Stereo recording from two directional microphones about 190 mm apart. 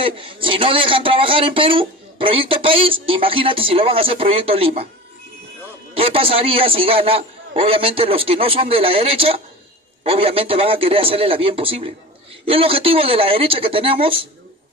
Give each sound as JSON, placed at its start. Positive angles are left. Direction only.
{"t": 0.0, "sound": "speech", "side_deg": -25}
{"t": 5.9, "sound": "speech", "side_deg": -30}